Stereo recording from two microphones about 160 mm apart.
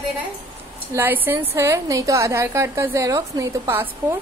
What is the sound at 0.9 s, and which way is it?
A woman's voice, 15° right (ahead or behind).